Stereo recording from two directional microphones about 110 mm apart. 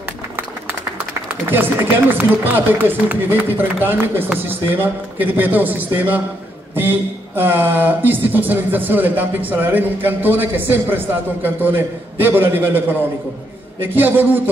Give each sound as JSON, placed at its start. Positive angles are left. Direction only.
{"t": 1.5, "sound": "speech", "side_deg": -20}